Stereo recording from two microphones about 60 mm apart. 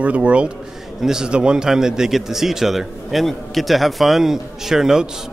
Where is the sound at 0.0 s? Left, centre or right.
Right.